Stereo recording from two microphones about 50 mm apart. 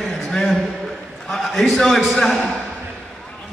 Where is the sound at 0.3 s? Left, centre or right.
Centre.